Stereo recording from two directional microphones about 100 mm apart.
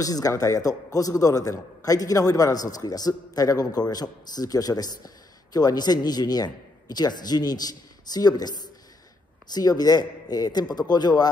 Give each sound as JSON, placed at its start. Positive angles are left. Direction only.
{"t": 0.0, "sound": "a man's voice", "side_deg": 35}